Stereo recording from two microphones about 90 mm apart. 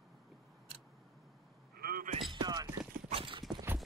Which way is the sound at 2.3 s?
50° right (ahead or behind).